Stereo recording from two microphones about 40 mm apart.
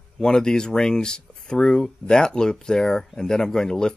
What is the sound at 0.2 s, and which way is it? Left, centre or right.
Speech, centre.